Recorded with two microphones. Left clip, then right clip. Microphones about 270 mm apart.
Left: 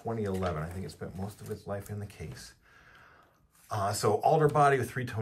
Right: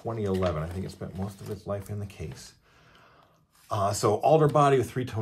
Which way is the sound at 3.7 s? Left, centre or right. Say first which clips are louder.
Right 3 dB; right.